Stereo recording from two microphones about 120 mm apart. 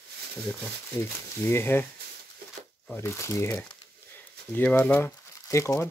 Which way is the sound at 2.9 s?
20° left (ahead or behind).